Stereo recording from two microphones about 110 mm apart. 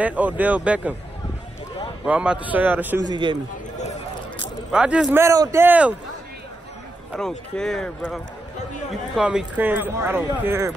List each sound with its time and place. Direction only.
0.0 s speech: 15° right (ahead or behind)
2.0 s speech: 10° right (ahead or behind)
3.0 s a man's voice: 45° right (ahead or behind)
4.7 s speech: 10° right (ahead or behind)
5.1 s speech: 25° right (ahead or behind)
7.1 s speech: 5° left (ahead or behind)
9.1 s speech: 5° right (ahead or behind); by 10.7 s 20° right (ahead or behind)